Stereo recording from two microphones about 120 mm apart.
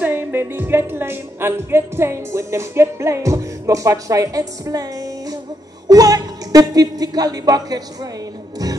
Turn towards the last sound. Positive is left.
turn(degrees=-30)  # may be behind; listen again after turning